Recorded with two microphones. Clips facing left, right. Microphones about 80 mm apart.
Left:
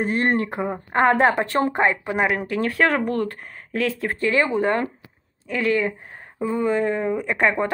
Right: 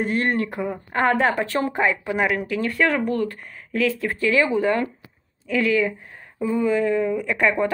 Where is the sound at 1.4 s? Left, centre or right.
Left.